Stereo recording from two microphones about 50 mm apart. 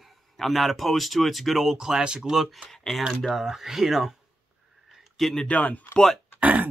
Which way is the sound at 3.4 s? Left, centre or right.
Centre.